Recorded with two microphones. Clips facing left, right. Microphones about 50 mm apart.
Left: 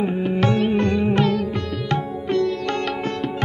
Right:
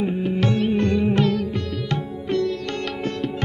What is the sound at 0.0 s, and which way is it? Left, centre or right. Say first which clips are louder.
Music: left 2 dB; left.